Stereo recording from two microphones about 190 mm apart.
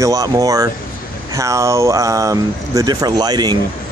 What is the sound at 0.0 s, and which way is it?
Speech, 20° right (ahead or behind).